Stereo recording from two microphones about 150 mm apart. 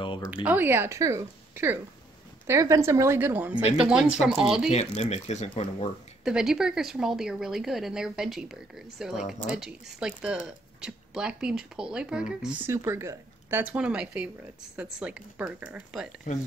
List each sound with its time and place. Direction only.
0.2 s speech: 10° right (ahead or behind)
4.6 s speech: 45° left (ahead or behind)
6.2 s speech: 5° right (ahead or behind)